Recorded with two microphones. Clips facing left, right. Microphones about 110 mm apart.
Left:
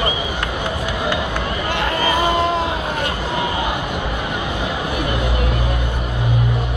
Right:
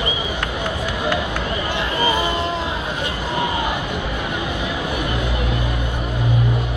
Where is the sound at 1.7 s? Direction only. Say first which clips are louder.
Left 2 dB; 60° left (ahead or behind).